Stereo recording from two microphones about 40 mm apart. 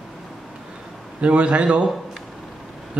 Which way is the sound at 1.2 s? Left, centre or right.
Right.